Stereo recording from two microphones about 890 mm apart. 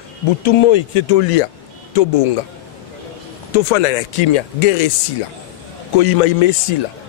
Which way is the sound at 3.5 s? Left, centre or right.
Left.